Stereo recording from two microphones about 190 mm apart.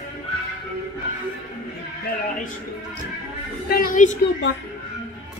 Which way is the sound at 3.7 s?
50° left (ahead or behind).